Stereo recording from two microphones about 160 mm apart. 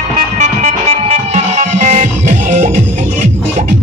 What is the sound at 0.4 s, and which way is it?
Music, 45° right (ahead or behind).